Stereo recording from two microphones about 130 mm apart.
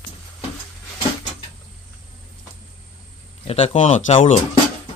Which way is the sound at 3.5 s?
50° left (ahead or behind).